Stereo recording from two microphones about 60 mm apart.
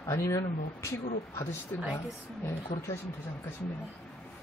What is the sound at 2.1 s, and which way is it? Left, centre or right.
Speech, left.